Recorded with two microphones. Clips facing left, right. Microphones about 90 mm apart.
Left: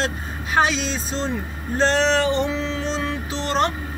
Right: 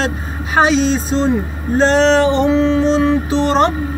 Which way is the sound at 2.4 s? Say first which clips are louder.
Right 12 dB; 40° right (ahead or behind).